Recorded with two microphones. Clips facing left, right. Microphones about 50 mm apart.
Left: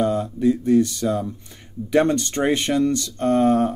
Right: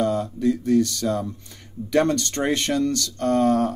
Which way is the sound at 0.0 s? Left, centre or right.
Left.